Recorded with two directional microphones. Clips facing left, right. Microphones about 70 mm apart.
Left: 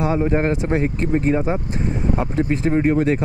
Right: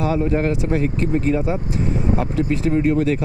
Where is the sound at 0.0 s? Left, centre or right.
Left.